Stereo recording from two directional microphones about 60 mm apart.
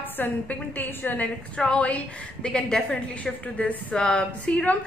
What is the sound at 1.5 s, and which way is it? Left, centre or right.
A woman's voice, centre.